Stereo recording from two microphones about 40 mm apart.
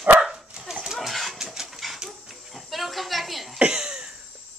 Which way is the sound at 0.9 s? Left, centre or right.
Centre.